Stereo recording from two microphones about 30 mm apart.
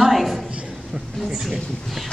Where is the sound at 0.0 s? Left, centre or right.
Centre.